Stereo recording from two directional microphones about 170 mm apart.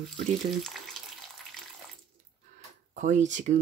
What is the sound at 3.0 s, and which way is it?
Speech, 45° right (ahead or behind).